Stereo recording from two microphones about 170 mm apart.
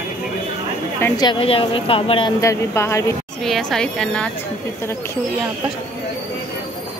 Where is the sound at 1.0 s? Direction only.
25° left (ahead or behind).